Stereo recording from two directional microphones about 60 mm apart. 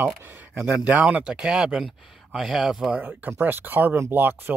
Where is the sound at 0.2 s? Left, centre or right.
Right.